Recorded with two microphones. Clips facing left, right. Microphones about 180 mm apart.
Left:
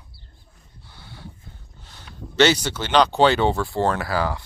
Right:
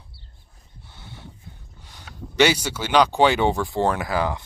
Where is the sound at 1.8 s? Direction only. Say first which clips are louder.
Even; 10° right (ahead or behind).